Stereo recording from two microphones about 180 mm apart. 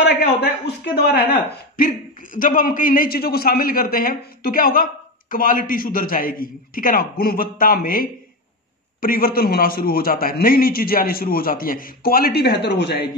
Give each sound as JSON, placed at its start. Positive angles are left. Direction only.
{"t": 0.0, "sound": "a man's voice", "side_deg": 65}